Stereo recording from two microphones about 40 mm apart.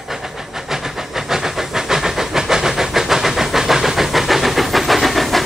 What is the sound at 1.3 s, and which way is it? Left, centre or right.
Steam, centre.